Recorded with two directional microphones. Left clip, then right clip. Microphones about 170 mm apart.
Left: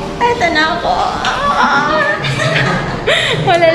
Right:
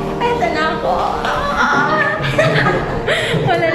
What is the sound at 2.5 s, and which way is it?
Chuckle, centre (ahead or behind).